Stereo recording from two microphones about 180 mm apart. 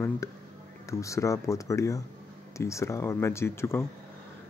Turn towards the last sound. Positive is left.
turn(degrees=15)  # may be behind; listen again after turning